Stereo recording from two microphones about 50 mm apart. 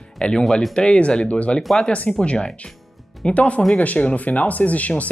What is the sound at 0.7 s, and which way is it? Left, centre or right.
Speech, left.